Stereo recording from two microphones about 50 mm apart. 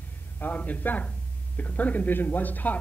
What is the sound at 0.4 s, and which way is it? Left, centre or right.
Speech, left.